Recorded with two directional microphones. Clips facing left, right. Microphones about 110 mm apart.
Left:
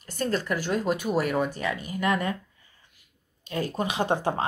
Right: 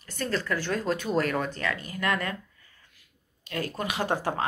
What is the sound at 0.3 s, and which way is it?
Speech, 15° left (ahead or behind).